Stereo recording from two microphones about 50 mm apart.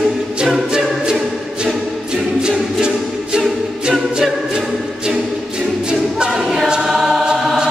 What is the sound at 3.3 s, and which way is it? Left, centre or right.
A capella, centre.